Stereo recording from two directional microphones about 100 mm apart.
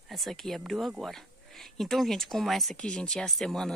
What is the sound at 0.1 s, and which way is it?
Speech, centre (ahead or behind).